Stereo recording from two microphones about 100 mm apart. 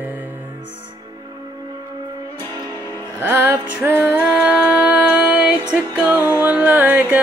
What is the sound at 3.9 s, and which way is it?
Music, 20° right (ahead or behind).